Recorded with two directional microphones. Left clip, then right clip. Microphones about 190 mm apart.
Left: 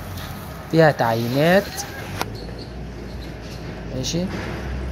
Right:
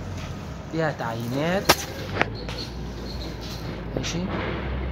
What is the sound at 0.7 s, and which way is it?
Speech, 20° left (ahead or behind).